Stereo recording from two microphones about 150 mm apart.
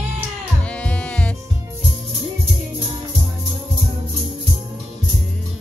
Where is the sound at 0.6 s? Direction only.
10° left (ahead or behind).